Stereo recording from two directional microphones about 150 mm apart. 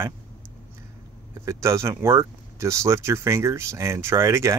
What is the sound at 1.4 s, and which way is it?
Speech, 20° right (ahead or behind).